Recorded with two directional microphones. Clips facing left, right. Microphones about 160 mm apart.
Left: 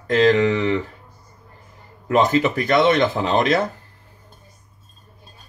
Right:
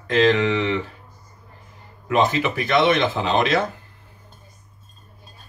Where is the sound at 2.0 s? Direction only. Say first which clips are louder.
Left 3 dB; 45° left (ahead or behind).